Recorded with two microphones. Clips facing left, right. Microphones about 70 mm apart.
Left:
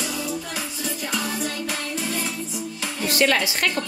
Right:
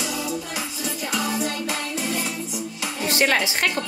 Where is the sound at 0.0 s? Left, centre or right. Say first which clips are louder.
Right 1 dB; right.